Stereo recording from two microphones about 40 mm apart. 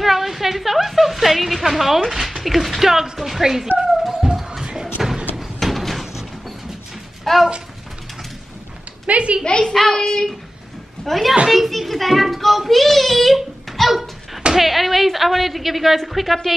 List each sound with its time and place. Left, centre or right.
0.0 s music: centre
2.0 s speech: centre
3.8 s music: centre
4.6 s thump: centre
5.6 s a sound: centre
7.3 s a sound: centre
9.0 s a woman's voice: right
9.4 s a woman's voice: centre
9.7 s a child's voice: centre